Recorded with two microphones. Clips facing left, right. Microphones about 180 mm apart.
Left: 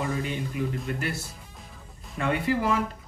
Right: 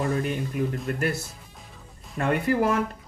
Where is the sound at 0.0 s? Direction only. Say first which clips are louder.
Right 3 dB; 45° right (ahead or behind).